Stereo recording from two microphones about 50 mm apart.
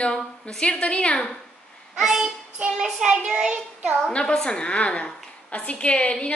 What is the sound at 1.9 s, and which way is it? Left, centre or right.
Speech, centre.